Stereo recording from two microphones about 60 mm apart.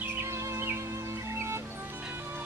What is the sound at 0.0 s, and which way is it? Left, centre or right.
Music, right.